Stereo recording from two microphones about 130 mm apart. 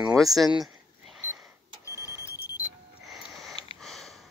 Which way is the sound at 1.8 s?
20° right (ahead or behind).